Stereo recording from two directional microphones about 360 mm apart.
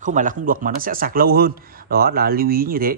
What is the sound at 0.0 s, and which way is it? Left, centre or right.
Speech, right.